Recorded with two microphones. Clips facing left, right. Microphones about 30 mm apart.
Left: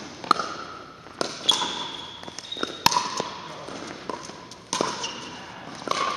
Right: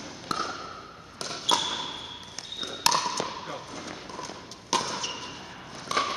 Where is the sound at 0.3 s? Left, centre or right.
Left.